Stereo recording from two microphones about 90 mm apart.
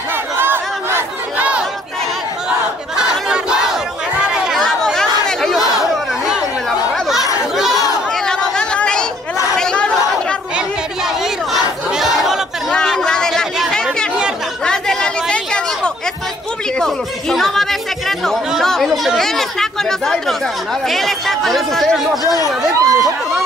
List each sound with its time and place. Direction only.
0.4 s crowd: 25° right (ahead or behind)
3.0 s battle cry: 10° right (ahead or behind)
4.6 s chatter: 5° left (ahead or behind)
8.1 s chatter: 10° left (ahead or behind)
9.6 s a sound: 10° left (ahead or behind)
11.5 s battle cry: centre (ahead or behind)
12.7 s chatter: 5° left (ahead or behind)
16.7 s a sound: 5° left (ahead or behind)
20.8 s speech: centre (ahead or behind)
22.2 s speech: 45° left (ahead or behind)
22.8 s a sound: 40° right (ahead or behind)